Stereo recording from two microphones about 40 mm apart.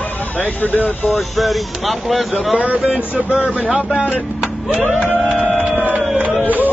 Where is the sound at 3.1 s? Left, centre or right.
Right.